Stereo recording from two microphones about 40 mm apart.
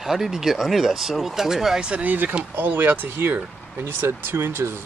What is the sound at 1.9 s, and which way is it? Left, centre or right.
Speech, right.